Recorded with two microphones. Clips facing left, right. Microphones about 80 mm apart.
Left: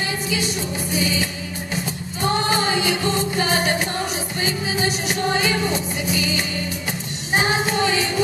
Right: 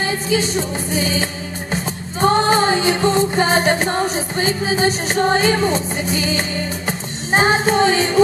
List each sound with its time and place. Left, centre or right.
0.0 s music: right